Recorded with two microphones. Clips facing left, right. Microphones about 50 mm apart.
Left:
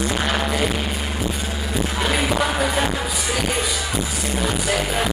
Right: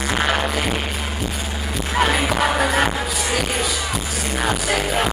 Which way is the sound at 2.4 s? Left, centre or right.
Right.